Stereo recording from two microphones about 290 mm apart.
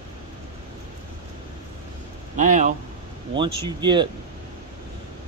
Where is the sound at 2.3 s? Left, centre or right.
Right.